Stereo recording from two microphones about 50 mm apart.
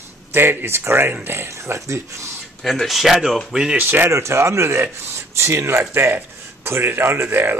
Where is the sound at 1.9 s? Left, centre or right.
Right.